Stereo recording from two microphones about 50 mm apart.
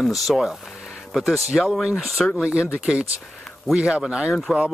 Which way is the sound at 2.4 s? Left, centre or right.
Centre.